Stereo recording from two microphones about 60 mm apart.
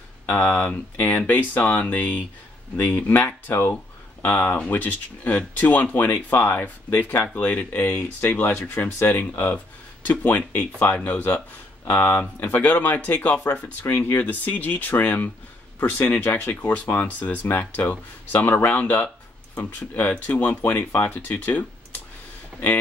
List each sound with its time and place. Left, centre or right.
0.4 s speech: left